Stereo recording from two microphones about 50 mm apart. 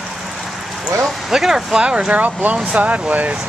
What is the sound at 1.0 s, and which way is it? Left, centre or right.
Speech, centre.